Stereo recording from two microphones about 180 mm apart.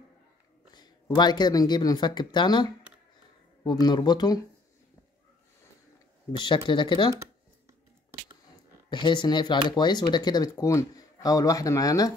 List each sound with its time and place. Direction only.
1.1 s speech: 25° left (ahead or behind)
6.4 s speech: 25° left (ahead or behind)
8.9 s speech: 25° left (ahead or behind)